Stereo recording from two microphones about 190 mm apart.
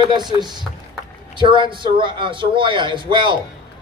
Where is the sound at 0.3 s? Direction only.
20° right (ahead or behind).